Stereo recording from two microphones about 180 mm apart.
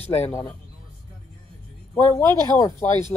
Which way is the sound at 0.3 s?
20° left (ahead or behind).